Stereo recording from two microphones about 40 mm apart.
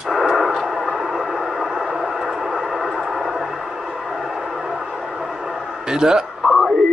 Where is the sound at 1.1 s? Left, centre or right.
Centre.